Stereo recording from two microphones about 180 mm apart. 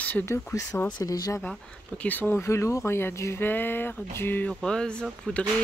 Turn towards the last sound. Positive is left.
turn(degrees=5)  # may be behind; listen again after turning